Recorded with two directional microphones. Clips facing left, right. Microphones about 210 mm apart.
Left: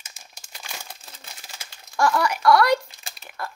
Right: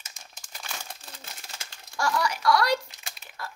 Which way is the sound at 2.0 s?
55° left (ahead or behind).